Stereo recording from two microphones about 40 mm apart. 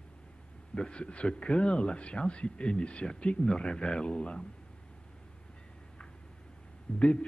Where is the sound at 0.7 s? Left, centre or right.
Left.